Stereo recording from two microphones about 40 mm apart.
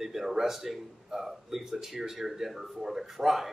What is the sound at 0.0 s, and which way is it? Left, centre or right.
Speech, centre.